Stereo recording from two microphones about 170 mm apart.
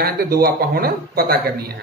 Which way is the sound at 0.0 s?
65° right (ahead or behind).